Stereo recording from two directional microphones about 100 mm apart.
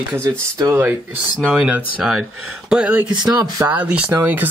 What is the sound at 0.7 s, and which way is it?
Speech, 20° right (ahead or behind).